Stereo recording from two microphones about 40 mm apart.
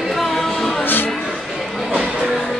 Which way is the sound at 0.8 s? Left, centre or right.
Left.